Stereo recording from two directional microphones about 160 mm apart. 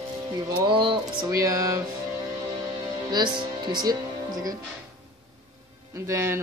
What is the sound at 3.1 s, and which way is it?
Speech, 30° right (ahead or behind).